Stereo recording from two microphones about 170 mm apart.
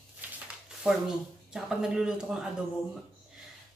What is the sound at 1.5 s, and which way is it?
A woman's voice, 5° right (ahead or behind).